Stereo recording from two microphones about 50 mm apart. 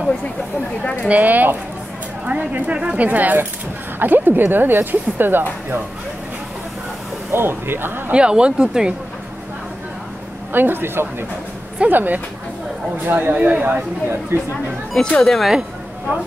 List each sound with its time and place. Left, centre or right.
1.0 s speech: right
7.3 s speech: right
8.1 s speech: right
10.5 s speech: right
11.9 s speech: right
13.7 s speech: right
15.0 s speech: centre